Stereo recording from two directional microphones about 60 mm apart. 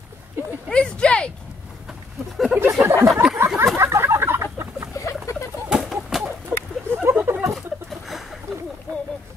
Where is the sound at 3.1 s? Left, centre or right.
Centre.